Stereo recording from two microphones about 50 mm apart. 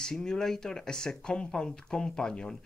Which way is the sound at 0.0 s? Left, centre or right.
Centre.